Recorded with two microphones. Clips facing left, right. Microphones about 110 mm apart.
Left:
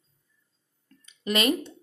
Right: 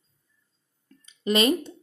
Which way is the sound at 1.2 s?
30° right (ahead or behind).